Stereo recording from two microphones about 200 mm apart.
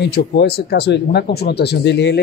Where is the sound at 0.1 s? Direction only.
50° left (ahead or behind).